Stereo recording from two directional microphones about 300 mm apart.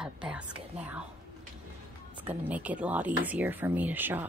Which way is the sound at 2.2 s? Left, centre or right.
Centre.